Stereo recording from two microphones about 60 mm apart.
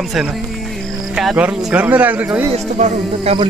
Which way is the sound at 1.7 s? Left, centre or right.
Right.